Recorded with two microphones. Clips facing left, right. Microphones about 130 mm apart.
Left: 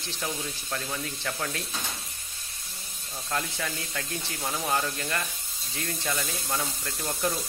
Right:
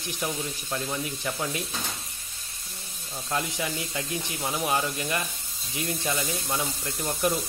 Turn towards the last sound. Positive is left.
turn(degrees=-15)  # may be behind; listen again after turning